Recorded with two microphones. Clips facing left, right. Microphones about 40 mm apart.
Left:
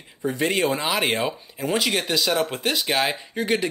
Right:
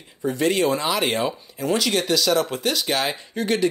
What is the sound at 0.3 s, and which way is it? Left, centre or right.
Speech, left.